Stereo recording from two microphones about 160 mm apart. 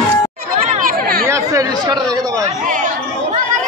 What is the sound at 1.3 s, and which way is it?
Chatter, 20° right (ahead or behind).